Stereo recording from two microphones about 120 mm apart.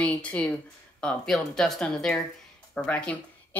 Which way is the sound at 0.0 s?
10° left (ahead or behind).